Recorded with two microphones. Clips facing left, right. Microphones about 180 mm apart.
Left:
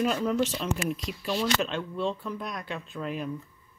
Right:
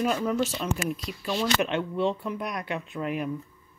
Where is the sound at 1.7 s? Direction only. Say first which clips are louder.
Right 4 dB; 65° right (ahead or behind).